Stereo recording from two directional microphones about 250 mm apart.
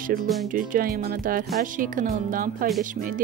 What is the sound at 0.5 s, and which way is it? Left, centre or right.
Speech, right.